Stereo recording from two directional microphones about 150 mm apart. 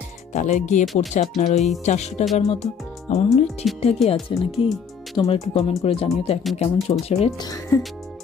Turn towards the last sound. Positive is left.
turn(degrees=25)  # may be behind; listen again after turning